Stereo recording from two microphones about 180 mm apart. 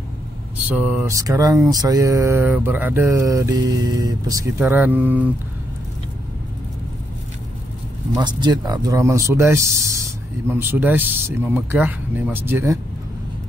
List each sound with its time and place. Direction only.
0.7 s mantra: 10° right (ahead or behind)
8.1 s mantra: 25° right (ahead or behind)